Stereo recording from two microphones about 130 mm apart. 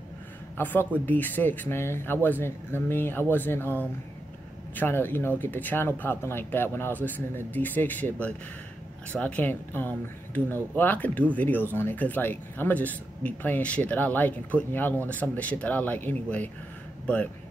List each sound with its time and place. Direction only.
0.6 s speech: 15° left (ahead or behind)